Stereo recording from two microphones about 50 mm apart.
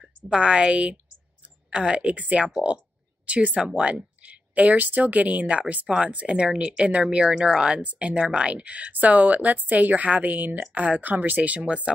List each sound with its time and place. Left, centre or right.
0.0 s speech: centre
7.8 s speech: right
8.1 s speech: centre
8.5 s a woman's voice: right